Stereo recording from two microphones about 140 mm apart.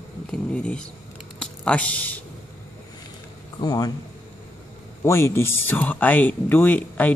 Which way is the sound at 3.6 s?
30° left (ahead or behind).